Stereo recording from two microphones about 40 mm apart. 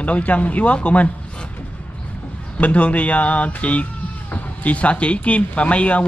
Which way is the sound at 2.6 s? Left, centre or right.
Left.